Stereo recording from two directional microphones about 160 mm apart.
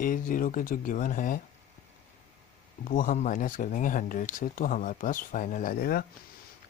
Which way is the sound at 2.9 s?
55° left (ahead or behind).